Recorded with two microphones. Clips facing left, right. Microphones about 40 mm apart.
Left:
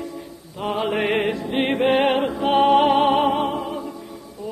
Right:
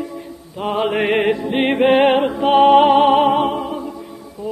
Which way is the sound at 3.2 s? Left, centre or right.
Centre.